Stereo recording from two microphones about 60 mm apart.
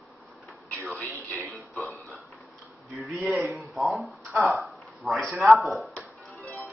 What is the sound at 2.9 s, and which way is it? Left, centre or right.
Speech, centre.